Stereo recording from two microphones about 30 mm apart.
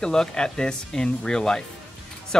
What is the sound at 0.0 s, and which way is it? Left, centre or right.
Speech, left.